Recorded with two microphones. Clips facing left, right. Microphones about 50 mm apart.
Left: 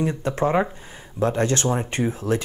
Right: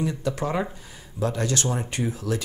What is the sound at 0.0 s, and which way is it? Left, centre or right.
Speech, left.